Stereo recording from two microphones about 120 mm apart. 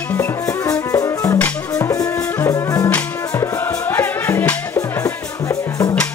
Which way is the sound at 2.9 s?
20° left (ahead or behind).